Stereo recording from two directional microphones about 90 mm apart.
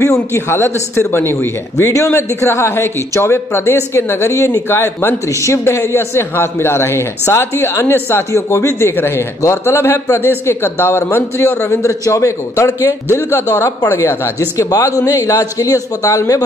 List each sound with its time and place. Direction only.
0.0 s a man's voice: 35° left (ahead or behind)